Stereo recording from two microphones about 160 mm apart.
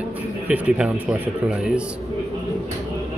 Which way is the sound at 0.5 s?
10° right (ahead or behind).